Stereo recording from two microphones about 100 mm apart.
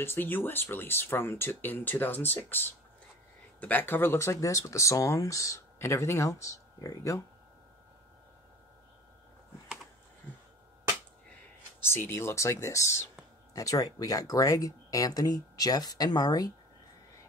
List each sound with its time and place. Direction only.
0.0 s speech: 20° left (ahead or behind)
11.9 s speech: 25° left (ahead or behind); by 16.5 s 40° left (ahead or behind)